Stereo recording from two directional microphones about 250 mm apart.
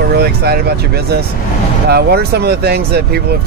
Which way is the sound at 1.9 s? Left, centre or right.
Right.